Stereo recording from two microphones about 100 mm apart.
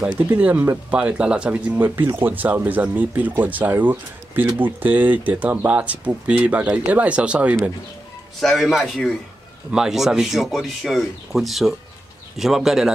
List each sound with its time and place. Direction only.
0.0 s speech: 15° right (ahead or behind)
8.4 s speech: centre (ahead or behind)